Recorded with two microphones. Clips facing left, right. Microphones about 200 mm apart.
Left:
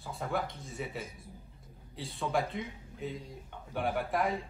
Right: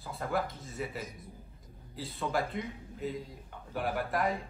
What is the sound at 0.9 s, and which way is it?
Speech, 30° left (ahead or behind).